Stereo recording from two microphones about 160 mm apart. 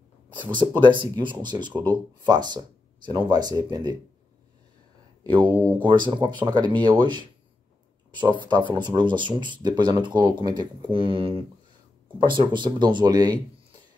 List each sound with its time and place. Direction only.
0.6 s speech: 30° right (ahead or behind)
5.2 s speech: 30° right (ahead or behind)